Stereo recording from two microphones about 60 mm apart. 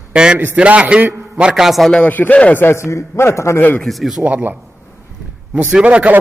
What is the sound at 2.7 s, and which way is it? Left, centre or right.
Speech, left.